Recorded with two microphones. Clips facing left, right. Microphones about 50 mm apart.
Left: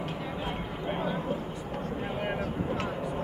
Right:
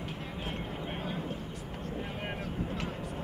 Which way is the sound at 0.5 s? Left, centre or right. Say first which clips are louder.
Left 2 dB; centre.